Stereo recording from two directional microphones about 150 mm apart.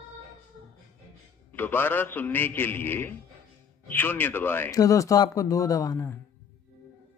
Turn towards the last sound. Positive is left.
turn(degrees=20)  # may be behind; listen again after turning